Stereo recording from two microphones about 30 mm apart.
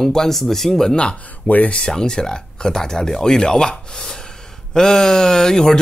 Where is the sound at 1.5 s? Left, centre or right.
Left.